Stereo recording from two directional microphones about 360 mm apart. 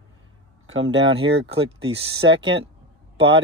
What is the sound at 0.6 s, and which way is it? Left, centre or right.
Speech, right.